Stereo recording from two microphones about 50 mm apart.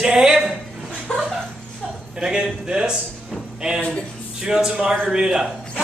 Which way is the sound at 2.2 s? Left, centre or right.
Centre.